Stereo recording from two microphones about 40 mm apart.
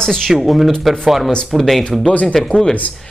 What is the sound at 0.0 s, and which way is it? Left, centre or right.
Speech, centre.